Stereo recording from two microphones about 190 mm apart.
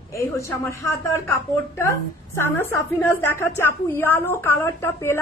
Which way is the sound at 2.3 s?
15° left (ahead or behind).